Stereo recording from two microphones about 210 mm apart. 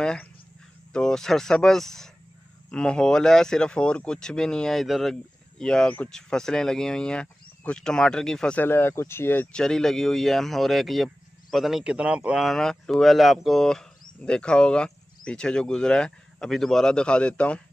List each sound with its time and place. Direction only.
0.0 s speech: 5° left (ahead or behind)